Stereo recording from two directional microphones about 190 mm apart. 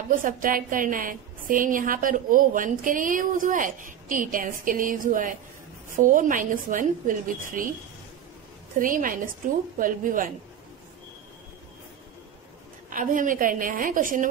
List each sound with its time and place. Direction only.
0.1 s a woman's voice: 45° right (ahead or behind)
8.7 s a woman's voice: 45° right (ahead or behind)
12.9 s a woman's voice: 45° right (ahead or behind)